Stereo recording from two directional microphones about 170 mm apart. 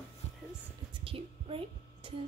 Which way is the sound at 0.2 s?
40° left (ahead or behind).